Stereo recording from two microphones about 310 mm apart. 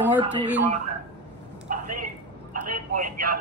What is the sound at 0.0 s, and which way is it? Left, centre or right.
Speech, centre.